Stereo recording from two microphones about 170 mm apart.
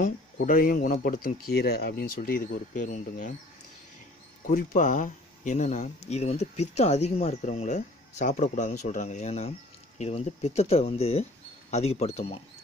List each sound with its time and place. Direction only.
0.0 s speech: 55° left (ahead or behind)
4.5 s speech: 50° left (ahead or behind)